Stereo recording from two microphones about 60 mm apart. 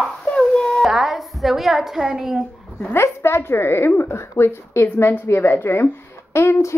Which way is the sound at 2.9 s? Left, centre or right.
Left.